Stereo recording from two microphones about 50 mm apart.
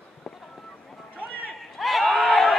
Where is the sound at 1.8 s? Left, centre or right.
Centre.